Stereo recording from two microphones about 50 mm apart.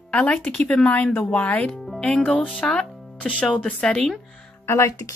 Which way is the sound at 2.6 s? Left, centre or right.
Centre.